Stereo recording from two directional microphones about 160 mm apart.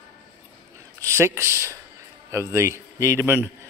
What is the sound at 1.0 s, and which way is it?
A man's voice, 15° right (ahead or behind).